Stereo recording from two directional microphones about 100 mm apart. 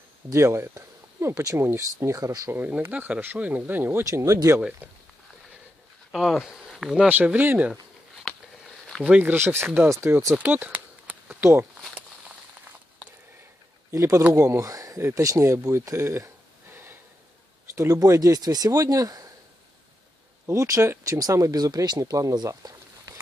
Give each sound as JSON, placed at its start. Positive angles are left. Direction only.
{"t": 0.3, "sound": "speech", "side_deg": -30}
{"t": 2.5, "sound": "speech", "side_deg": -20}
{"t": 4.0, "sound": "speech", "side_deg": -35}
{"t": 6.1, "sound": "speech", "side_deg": 0}
{"t": 8.3, "sound": "a sound", "side_deg": 0}
{"t": 9.0, "sound": "speech", "side_deg": -15}
{"t": 10.3, "sound": "a sound", "side_deg": -15}
{"t": 13.9, "sound": "speech", "side_deg": -35}
{"t": 16.7, "sound": "snort", "side_deg": -20}
{"t": 17.7, "sound": "speech", "side_deg": -35}
{"t": 20.4, "sound": "speech", "side_deg": -30}